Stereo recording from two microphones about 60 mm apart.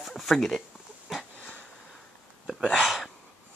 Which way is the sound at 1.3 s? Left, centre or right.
Left.